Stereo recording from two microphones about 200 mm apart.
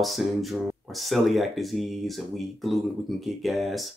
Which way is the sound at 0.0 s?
Centre (ahead or behind).